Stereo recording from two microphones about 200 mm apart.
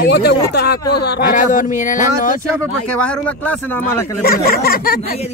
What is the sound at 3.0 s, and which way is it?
Speech, 5° left (ahead or behind).